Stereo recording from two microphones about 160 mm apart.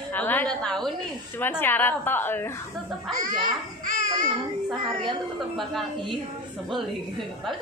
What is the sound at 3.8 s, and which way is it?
Babbling, 55° right (ahead or behind).